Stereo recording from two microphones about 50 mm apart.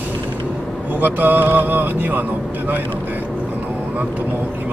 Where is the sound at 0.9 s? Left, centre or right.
Right.